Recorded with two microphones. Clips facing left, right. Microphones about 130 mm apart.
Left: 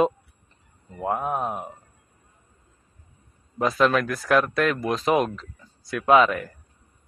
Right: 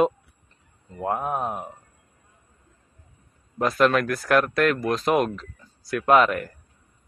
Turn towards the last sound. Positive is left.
turn(degrees=0)  # may be behind; listen again after turning